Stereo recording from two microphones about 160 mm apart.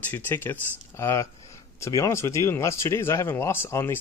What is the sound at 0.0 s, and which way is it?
Speech, 10° left (ahead or behind).